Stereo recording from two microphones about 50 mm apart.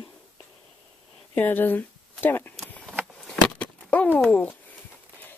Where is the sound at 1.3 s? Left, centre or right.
Left.